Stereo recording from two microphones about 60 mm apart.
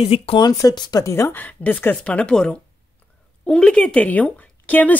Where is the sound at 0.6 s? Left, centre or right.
Left.